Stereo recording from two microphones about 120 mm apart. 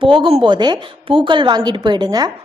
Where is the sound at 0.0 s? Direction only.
45° right (ahead or behind).